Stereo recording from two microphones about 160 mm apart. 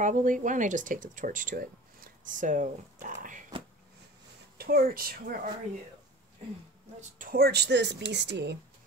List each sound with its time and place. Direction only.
0.0 s speech: 55° right (ahead or behind)
4.6 s speech: 65° right (ahead or behind)
7.0 s speech: 60° right (ahead or behind); by 8.5 s 90° right